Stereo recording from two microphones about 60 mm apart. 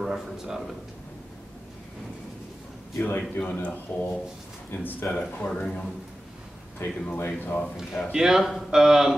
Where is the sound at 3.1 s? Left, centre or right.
Left.